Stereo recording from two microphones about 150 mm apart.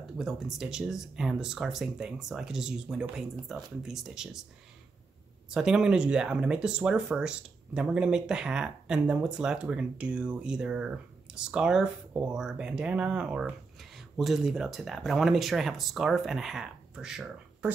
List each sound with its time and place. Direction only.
0.2 s speech: 5° right (ahead or behind)
5.5 s speech: 5° right (ahead or behind)